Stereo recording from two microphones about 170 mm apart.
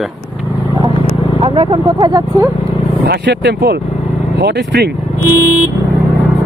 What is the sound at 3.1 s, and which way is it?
Speech, 85° right.